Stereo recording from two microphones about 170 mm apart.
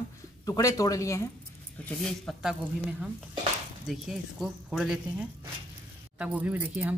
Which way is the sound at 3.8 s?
Centre (ahead or behind).